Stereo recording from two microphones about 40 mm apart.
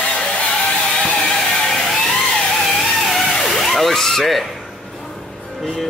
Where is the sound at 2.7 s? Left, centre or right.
Centre.